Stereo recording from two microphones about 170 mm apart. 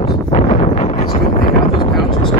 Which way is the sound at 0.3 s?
40° left (ahead or behind).